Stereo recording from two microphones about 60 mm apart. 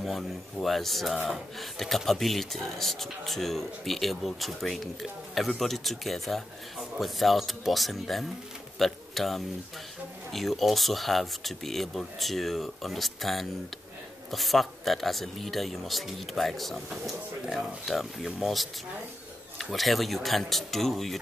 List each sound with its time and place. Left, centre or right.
0.0 s speech: centre